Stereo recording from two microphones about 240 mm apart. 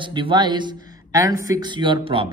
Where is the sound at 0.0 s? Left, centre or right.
Centre.